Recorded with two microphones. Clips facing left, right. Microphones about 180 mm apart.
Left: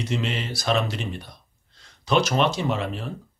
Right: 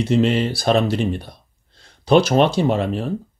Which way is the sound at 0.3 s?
30° right (ahead or behind).